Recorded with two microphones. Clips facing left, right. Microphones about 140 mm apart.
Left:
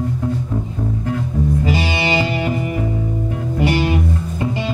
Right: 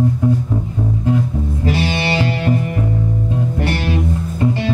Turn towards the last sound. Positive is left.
turn(degrees=10)  # may be behind; listen again after turning